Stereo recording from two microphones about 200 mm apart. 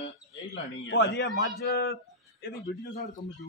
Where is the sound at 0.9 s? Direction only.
60° left (ahead or behind).